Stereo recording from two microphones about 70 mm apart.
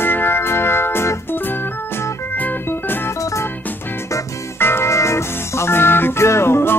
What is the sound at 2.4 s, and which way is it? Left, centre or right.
Organ, left.